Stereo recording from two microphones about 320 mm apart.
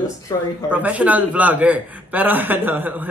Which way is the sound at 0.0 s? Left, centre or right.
Centre.